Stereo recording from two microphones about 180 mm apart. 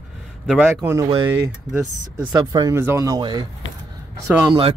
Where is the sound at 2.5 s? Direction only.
20° right (ahead or behind).